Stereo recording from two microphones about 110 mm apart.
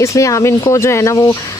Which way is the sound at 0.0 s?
30° left (ahead or behind).